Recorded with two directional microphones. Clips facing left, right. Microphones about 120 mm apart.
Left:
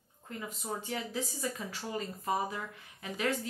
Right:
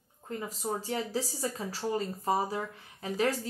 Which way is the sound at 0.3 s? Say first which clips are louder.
Right 5 dB; 35° right (ahead or behind).